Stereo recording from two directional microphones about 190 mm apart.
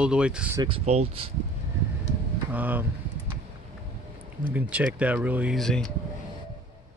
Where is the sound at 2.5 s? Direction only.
10° right (ahead or behind).